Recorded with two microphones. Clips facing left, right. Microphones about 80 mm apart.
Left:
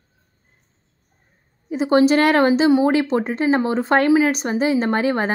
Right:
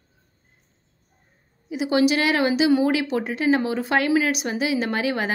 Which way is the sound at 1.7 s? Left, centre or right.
Left.